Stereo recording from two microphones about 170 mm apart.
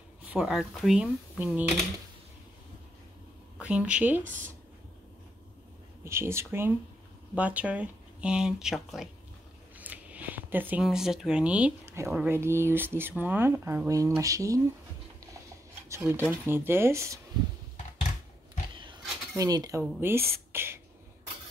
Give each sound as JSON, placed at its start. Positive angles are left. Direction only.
{"t": 0.2, "sound": "speech", "side_deg": -5}
{"t": 3.5, "sound": "a woman's voice", "side_deg": -5}
{"t": 6.0, "sound": "speech", "side_deg": -15}
{"t": 15.9, "sound": "speech", "side_deg": -15}
{"t": 18.8, "sound": "dishes", "side_deg": -25}
{"t": 19.8, "sound": "speech", "side_deg": -15}